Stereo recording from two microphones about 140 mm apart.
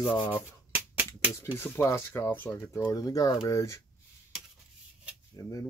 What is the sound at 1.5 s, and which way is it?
Speech, 15° left (ahead or behind).